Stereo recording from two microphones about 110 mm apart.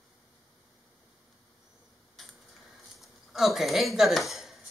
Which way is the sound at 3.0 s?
Centre (ahead or behind).